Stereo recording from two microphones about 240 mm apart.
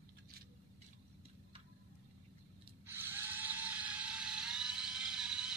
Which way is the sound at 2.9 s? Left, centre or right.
Centre.